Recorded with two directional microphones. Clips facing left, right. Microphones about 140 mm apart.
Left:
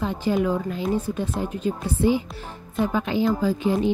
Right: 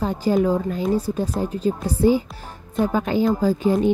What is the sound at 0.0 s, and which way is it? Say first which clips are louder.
Speech: right 3 dB; 40° right (ahead or behind).